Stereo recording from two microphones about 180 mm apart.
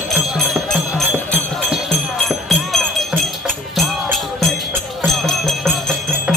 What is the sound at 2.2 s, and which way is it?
Music, centre (ahead or behind).